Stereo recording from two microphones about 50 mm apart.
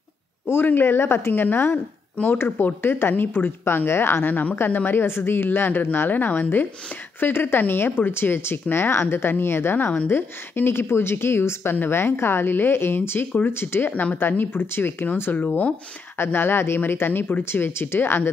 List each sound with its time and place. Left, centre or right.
0.7 s speech: left
1.3 s a woman's voice: left
10.0 s speech: left
15.3 s a woman's voice: left
16.3 s speech: left